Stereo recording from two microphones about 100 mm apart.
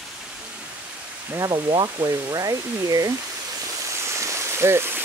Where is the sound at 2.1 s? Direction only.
35° right (ahead or behind).